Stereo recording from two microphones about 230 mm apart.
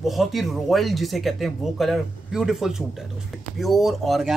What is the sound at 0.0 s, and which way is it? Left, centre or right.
Speech, centre.